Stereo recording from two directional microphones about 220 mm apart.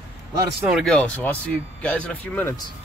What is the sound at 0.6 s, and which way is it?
Speech, centre (ahead or behind).